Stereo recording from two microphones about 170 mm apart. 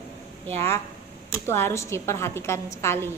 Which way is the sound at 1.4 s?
15° left (ahead or behind).